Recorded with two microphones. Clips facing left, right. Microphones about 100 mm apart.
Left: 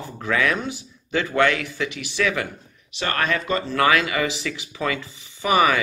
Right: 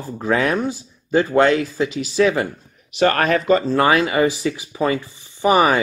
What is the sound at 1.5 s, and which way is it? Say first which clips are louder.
Speech: right 6 dB; 65° left (ahead or behind).